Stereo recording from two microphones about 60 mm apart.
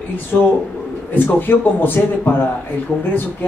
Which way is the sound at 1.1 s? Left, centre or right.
Left.